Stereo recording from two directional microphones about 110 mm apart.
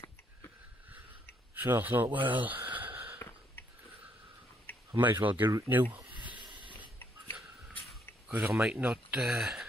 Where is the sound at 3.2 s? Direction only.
25° left (ahead or behind).